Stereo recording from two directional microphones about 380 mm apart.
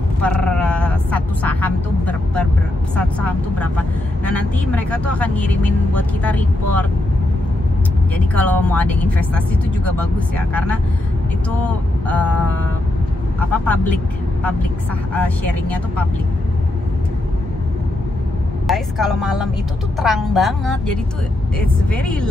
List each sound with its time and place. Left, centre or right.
0.2 s music: centre
3.0 s speech: centre
8.4 s speech: centre
15.1 s speech: centre
18.7 s speech: centre